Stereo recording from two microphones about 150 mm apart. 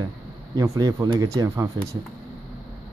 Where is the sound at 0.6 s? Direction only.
25° right (ahead or behind).